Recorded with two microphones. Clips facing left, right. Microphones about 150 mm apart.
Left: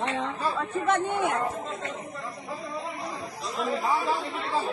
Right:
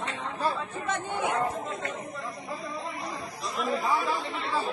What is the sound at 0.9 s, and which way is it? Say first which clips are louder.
Speech: left 4 dB; 70° left (ahead or behind).